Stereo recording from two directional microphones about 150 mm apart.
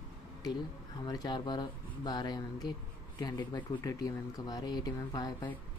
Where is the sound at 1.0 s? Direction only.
30° left (ahead or behind).